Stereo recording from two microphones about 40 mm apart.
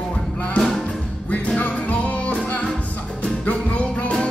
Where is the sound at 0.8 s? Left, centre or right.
Left.